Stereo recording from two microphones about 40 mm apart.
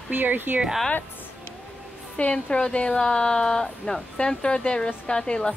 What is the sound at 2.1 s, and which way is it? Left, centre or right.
Speech, left.